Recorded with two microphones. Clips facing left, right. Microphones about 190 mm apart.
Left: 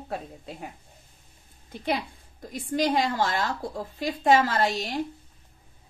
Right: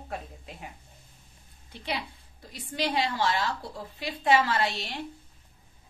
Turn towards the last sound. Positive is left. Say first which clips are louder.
# left 4 dB
turn(degrees=40)  # may be behind; listen again after turning